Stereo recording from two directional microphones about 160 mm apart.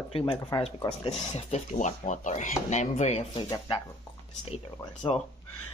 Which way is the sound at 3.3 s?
30° left (ahead or behind).